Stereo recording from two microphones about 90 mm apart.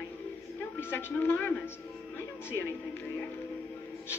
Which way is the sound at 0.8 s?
25° left (ahead or behind).